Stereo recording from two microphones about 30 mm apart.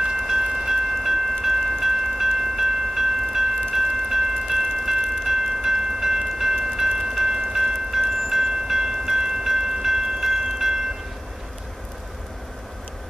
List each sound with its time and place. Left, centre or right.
0.2 s train: centre